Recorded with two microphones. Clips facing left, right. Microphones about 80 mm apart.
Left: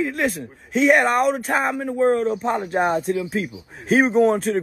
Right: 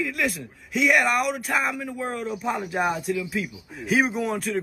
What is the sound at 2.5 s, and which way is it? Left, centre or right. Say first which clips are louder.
Speech: left 2 dB; centre.